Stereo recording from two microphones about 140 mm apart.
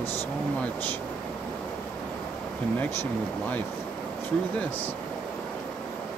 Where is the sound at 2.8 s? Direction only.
10° left (ahead or behind).